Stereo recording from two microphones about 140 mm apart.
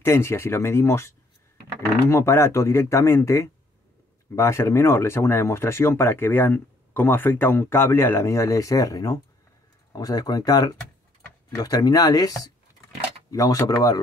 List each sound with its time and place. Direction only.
0.0 s speech: 20° left (ahead or behind)